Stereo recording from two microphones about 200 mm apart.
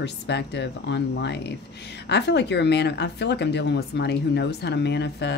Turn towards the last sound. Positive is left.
turn(degrees=55)  # may be behind; listen again after turning